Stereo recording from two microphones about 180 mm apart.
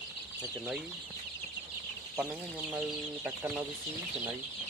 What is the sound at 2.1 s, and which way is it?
Speech, 5° right (ahead or behind).